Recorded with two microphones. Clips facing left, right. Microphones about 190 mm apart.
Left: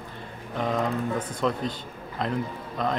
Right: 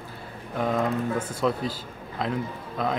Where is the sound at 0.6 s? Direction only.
Centre (ahead or behind).